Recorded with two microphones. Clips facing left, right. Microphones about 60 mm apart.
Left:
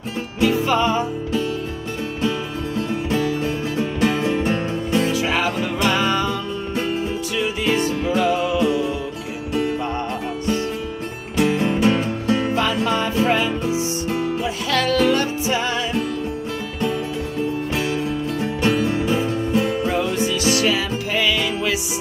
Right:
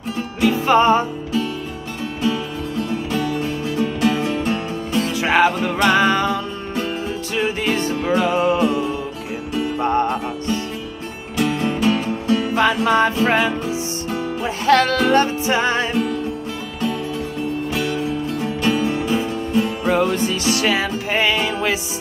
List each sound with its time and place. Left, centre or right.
0.4 s music: right
3.8 s music: left
5.2 s music: right
7.3 s music: right
11.3 s music: centre
12.5 s music: right
17.7 s music: centre
20.6 s music: right